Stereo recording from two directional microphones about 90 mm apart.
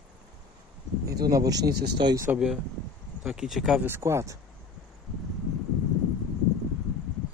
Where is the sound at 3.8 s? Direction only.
25° right (ahead or behind).